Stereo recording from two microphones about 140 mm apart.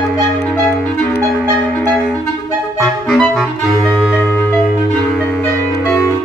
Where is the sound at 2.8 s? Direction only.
Centre (ahead or behind).